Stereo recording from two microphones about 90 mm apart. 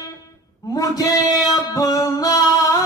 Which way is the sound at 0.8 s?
40° left (ahead or behind).